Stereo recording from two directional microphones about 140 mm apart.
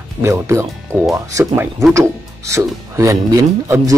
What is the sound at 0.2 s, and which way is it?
Speech, 20° right (ahead or behind).